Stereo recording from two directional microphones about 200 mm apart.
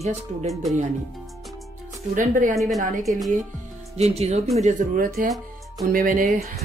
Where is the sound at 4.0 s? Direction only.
30° right (ahead or behind).